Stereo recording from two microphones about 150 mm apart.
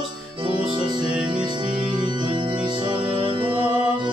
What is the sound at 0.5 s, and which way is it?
Music, 30° right (ahead or behind).